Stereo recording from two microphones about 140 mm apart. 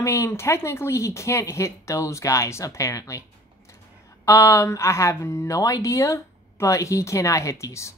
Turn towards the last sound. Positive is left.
turn(degrees=20)  # may be behind; listen again after turning